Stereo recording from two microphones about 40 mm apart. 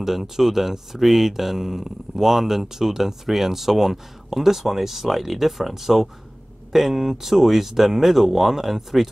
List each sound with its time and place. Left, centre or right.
0.0 s speech: centre